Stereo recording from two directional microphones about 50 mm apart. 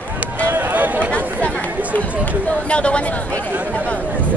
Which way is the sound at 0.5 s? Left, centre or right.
Right.